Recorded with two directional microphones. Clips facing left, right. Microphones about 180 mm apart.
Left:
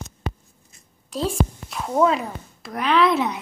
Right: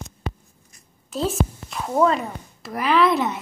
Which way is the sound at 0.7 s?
25° left (ahead or behind).